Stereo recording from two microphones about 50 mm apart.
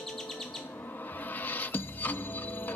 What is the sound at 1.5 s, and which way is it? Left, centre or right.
Music, left.